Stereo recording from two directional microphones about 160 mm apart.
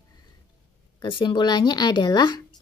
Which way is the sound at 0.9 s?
30° left (ahead or behind).